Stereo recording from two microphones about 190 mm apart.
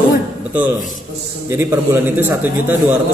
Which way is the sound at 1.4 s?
10° right (ahead or behind).